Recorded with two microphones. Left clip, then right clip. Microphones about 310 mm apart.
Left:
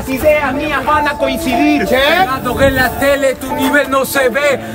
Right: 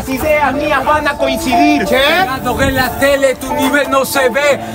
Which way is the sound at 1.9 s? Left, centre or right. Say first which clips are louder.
Even; left.